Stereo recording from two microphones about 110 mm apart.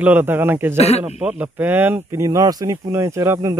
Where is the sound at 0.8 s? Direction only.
70° left (ahead or behind).